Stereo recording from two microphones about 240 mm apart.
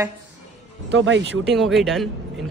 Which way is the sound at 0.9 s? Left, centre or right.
Right.